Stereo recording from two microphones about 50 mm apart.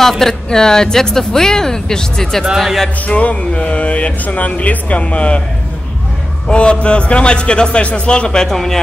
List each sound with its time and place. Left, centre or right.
0.2 s speech: centre
3.1 s a man's voice: left
6.4 s a man's voice: centre